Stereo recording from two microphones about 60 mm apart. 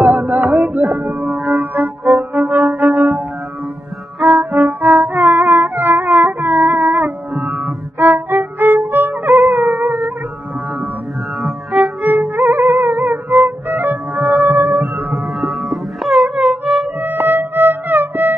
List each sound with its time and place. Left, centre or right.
0.0 s music: right
4.4 s music: right
11.8 s music: right
15.4 s music: centre
17.0 s music: right